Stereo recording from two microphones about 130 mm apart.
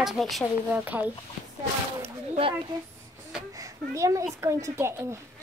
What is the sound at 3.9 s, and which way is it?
Speech, 25° right (ahead or behind).